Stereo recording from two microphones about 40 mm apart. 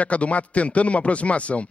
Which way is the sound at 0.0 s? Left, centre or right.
Left.